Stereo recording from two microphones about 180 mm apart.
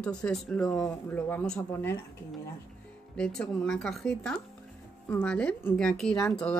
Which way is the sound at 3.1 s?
5° left (ahead or behind).